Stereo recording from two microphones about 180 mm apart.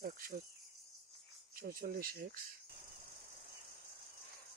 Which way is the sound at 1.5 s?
55° right (ahead or behind).